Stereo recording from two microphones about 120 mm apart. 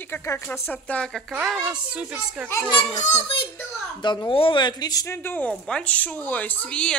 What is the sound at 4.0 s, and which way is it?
Speech, 40° left (ahead or behind).